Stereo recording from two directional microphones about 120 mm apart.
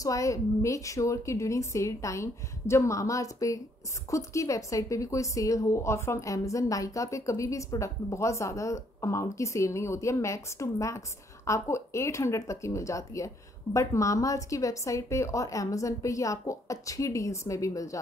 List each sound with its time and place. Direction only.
0.0 s a woman's voice: 25° left (ahead or behind)